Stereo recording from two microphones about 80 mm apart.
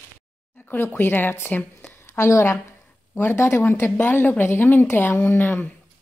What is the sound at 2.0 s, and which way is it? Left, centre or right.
A woman's voice, left.